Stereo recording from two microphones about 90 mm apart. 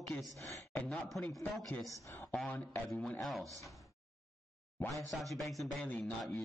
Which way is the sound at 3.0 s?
10° left (ahead or behind).